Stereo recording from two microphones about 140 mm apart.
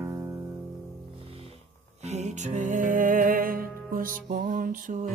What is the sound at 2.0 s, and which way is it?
Music, 55° right (ahead or behind).